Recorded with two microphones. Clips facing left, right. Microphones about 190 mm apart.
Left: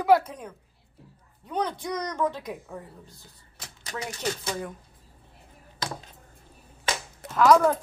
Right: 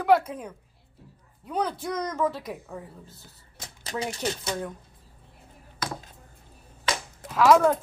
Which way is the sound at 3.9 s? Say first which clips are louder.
Right 4 dB; 30° right (ahead or behind).